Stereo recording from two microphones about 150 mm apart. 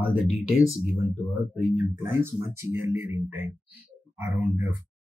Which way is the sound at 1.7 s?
15° right (ahead or behind).